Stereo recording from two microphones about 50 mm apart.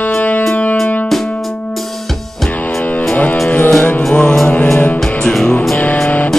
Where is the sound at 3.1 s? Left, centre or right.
Left.